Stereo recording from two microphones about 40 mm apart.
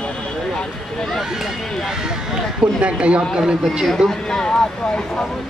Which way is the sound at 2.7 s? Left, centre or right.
Right.